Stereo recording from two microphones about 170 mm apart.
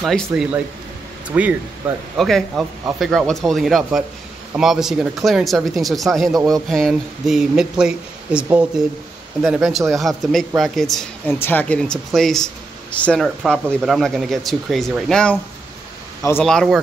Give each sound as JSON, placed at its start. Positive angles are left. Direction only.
{"t": 0.0, "sound": "speech", "side_deg": 0}
{"t": 2.1, "sound": "speech", "side_deg": 0}
{"t": 11.2, "sound": "speech", "side_deg": 15}
{"t": 16.2, "sound": "speech", "side_deg": 15}
{"t": 16.4, "sound": "speech", "side_deg": 0}